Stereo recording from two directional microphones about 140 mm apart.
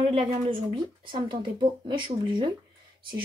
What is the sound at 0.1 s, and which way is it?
Speech, 40° right (ahead or behind).